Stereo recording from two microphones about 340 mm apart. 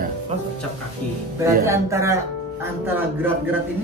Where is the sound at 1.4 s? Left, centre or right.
Centre.